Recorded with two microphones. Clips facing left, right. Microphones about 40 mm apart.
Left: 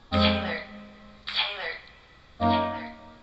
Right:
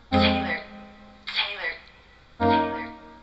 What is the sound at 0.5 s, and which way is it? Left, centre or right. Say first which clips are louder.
Music: right 3 dB; centre.